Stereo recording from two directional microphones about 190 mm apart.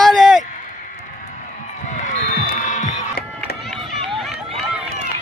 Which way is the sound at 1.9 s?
40° left (ahead or behind).